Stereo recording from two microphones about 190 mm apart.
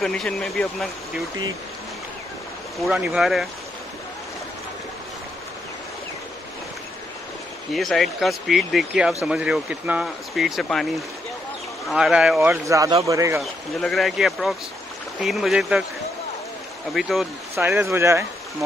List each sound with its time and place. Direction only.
0.0 s speech: 5° left (ahead or behind)
2.8 s speech: 5° right (ahead or behind)
7.7 s speech: centre (ahead or behind); by 13.4 s 15° right (ahead or behind)
13.4 s speech: centre (ahead or behind)
16.9 s speech: centre (ahead or behind)
17.6 s speech: 15° right (ahead or behind)